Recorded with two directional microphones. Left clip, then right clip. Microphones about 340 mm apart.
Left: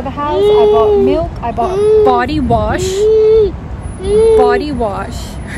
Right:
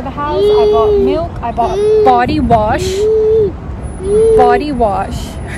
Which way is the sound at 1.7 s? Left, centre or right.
Centre.